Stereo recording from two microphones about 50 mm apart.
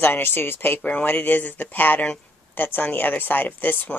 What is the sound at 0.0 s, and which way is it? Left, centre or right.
Speech, left.